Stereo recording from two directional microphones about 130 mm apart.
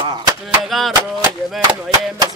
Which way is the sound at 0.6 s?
Centre (ahead or behind).